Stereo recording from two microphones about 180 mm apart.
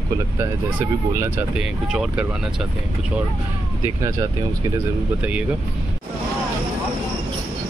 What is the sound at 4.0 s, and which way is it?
Speech, 15° right (ahead or behind).